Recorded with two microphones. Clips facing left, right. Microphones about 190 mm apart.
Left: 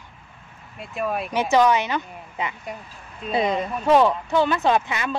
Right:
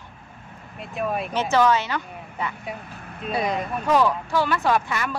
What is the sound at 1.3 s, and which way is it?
Speech, 15° left (ahead or behind).